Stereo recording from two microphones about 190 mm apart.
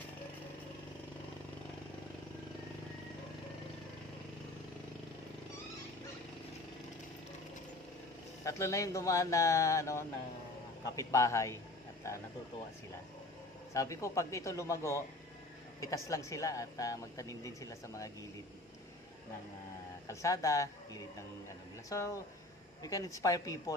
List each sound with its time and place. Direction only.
8.5 s a woman's voice: 15° left (ahead or behind)
13.7 s a woman's voice: 15° left (ahead or behind)
20.1 s a woman's voice: 15° left (ahead or behind)